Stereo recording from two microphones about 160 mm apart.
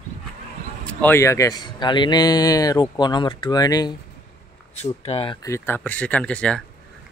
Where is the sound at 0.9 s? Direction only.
10° left (ahead or behind).